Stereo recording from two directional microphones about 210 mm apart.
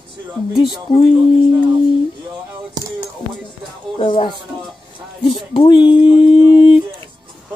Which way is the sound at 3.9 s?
25° left (ahead or behind).